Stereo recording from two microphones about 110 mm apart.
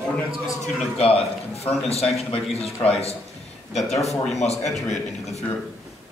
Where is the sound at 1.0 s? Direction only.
70° left (ahead or behind).